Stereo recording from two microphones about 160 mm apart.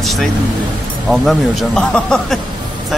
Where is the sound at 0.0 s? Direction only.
Centre (ahead or behind).